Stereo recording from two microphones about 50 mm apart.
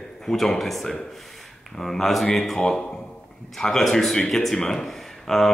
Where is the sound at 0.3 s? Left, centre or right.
Centre.